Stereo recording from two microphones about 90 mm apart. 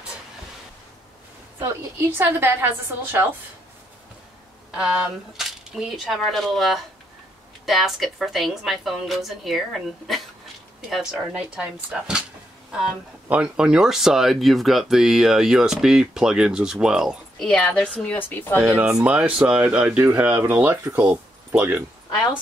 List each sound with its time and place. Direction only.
1.6 s a woman's voice: 25° right (ahead or behind)
4.6 s speech: 5° right (ahead or behind)
13.3 s speech: 10° right (ahead or behind)
17.4 s a woman's voice: 10° left (ahead or behind)
18.6 s speech: 15° right (ahead or behind)